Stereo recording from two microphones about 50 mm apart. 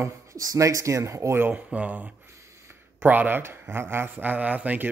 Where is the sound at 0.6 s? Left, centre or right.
Right.